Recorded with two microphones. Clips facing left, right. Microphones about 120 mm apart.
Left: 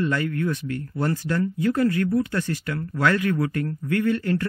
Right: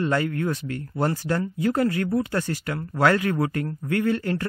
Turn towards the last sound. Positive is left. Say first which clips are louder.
# left 1 dB
turn(degrees=-30)  # may be behind; listen again after turning